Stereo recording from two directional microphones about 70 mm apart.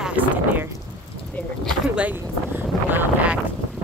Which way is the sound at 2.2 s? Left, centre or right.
Right.